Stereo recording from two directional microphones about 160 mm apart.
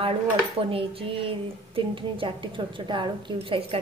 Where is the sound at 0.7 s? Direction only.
35° right (ahead or behind).